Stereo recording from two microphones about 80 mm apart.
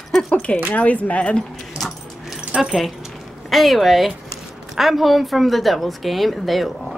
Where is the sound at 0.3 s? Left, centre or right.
Centre.